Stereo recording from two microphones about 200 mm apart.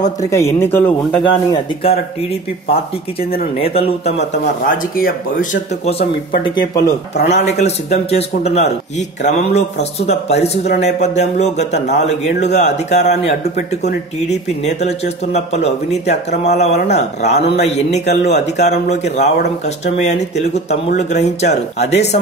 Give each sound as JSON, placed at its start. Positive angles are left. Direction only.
{"t": 0.2, "sound": "speech", "side_deg": 15}
{"t": 1.5, "sound": "speech", "side_deg": 30}
{"t": 3.5, "sound": "speech", "side_deg": 30}
{"t": 4.6, "sound": "speech", "side_deg": 45}
{"t": 6.4, "sound": "speech", "side_deg": 25}
{"t": 7.2, "sound": "speech", "side_deg": 35}